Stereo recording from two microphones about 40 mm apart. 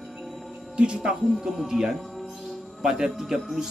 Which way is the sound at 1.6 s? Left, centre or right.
Centre.